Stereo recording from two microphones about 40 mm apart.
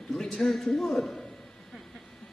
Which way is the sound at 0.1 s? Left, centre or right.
Centre.